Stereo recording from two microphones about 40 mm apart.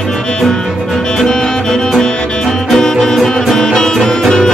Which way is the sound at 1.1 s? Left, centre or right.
Centre.